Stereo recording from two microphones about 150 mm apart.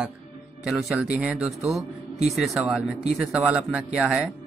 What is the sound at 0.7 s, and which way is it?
Speech, 5° right (ahead or behind).